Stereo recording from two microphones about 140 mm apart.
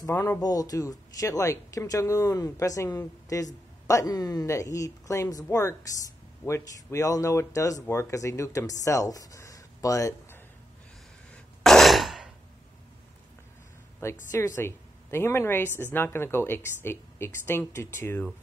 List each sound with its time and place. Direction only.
0.0 s speech: 20° left (ahead or behind)
11.3 s throat clearing: 5° left (ahead or behind)
14.3 s speech: 20° left (ahead or behind)